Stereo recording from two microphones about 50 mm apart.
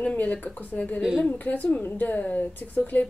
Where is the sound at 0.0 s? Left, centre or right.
Left.